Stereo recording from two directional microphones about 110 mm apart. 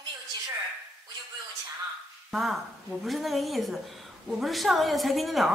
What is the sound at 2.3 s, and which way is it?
A woman's voice, centre (ahead or behind).